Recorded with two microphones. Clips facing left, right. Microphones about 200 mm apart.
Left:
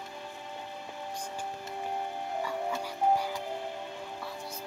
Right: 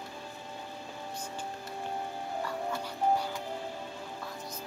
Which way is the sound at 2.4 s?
10° left (ahead or behind).